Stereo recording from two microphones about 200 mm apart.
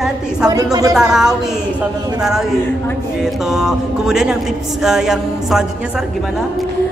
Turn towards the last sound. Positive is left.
turn(degrees=0)  # may be behind; listen again after turning